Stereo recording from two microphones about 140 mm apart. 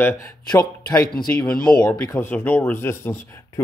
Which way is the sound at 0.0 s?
20° left (ahead or behind).